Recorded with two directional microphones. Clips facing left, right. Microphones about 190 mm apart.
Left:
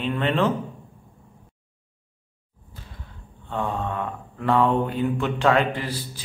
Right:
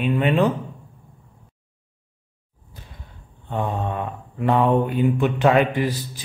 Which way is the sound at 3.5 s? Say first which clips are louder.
Right 2 dB; 15° right (ahead or behind).